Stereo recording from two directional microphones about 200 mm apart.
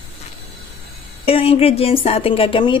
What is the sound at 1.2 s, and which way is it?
Speech, 30° left (ahead or behind).